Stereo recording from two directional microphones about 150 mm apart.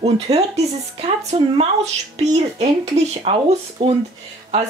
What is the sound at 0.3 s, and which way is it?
Speech, 45° right (ahead or behind).